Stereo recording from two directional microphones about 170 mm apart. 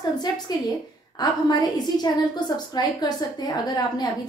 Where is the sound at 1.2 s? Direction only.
25° left (ahead or behind).